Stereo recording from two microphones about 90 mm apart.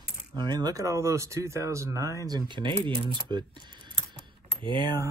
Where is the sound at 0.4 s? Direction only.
50° right (ahead or behind).